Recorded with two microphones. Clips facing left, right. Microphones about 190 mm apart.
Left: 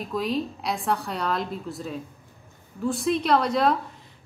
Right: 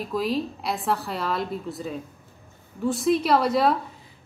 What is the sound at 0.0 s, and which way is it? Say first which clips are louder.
A woman's voice: right 1 dB; centre (ahead or behind).